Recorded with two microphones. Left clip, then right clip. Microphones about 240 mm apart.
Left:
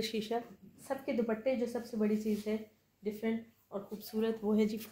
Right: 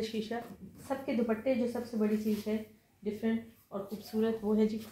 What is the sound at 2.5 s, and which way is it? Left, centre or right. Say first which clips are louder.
Speech: right 1 dB; left.